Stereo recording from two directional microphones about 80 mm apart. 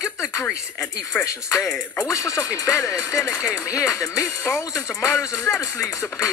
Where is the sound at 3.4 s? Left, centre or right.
Left.